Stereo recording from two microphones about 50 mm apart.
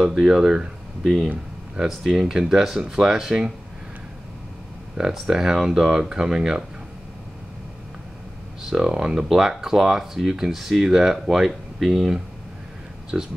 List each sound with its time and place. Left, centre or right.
0.0 s speech: centre
4.9 s speech: centre
8.6 s speech: centre
13.1 s speech: centre